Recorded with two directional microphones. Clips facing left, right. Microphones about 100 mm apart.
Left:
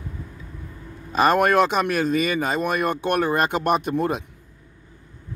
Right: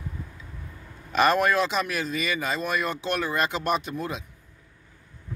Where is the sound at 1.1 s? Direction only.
35° left (ahead or behind).